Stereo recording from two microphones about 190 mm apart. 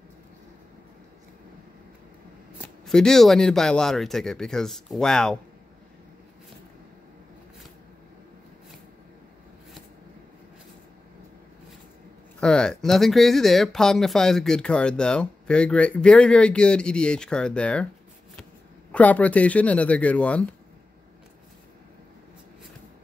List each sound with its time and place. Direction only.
2.6 s speech: 5° left (ahead or behind)
12.4 s speech: 5° left (ahead or behind)
18.9 s speech: 5° left (ahead or behind)